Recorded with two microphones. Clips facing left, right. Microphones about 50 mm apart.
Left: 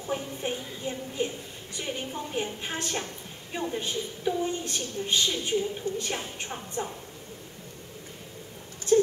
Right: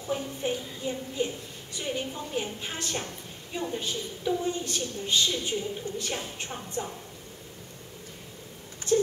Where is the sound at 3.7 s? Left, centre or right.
Left.